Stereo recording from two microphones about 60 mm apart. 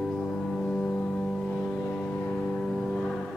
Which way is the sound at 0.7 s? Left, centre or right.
Left.